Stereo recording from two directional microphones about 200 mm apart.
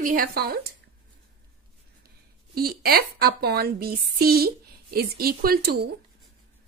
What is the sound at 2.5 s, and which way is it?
A woman's voice, 50° right (ahead or behind).